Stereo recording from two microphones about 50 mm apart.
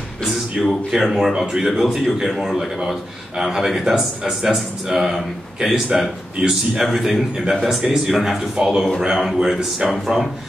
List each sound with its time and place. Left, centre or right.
0.2 s speech: centre
1.7 s speech: centre